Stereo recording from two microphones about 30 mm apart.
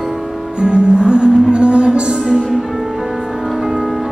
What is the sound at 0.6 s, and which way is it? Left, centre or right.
Music, right.